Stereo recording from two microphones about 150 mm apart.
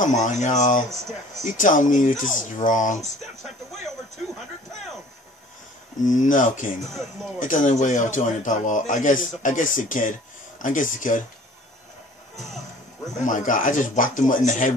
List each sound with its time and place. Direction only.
0.0 s a man's voice: 55° left (ahead or behind)
3.0 s speech: centre (ahead or behind)
6.0 s a man's voice: 60° left (ahead or behind)
6.8 s speech: centre (ahead or behind)
7.3 s a man's voice: 60° left (ahead or behind)
12.4 s music: centre (ahead or behind)
13.2 s a man's voice: 60° left (ahead or behind)